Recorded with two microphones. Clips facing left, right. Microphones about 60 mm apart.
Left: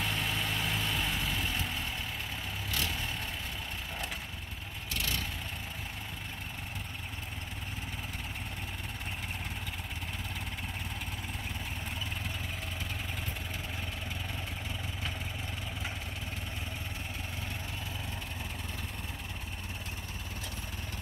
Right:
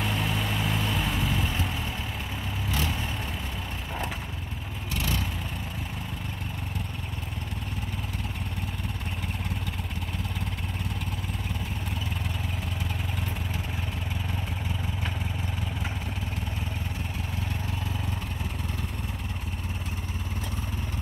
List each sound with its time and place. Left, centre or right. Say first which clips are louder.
0.0 s vehicle: right 5 dB; centre